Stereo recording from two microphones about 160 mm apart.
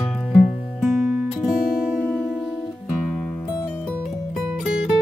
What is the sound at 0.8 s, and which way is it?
Music, centre (ahead or behind).